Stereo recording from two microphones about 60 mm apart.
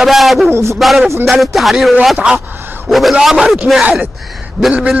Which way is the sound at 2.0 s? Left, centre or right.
Centre.